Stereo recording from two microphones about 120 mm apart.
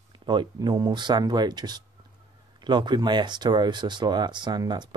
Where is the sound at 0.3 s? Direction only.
40° right (ahead or behind).